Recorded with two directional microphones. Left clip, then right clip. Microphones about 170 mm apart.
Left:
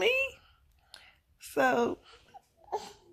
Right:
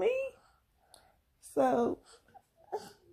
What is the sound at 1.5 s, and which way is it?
Speech, 10° left (ahead or behind).